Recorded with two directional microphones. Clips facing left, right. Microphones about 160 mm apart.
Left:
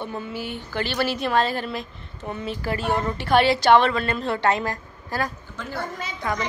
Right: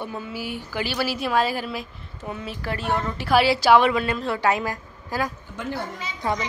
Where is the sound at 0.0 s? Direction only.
5° right (ahead or behind).